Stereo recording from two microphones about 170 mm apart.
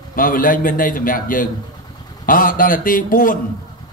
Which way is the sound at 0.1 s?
55° left (ahead or behind).